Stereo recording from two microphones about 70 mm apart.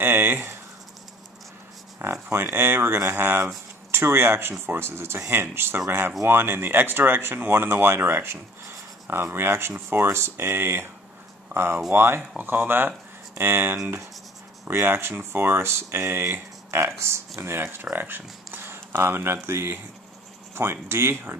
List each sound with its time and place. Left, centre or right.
0.0 s speech: right
2.2 s speech: right